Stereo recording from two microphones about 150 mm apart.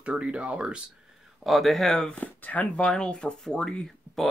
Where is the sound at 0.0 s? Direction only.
5° right (ahead or behind).